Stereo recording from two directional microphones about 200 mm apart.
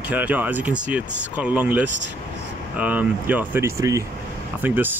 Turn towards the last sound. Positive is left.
turn(degrees=-10)  # may be behind; listen again after turning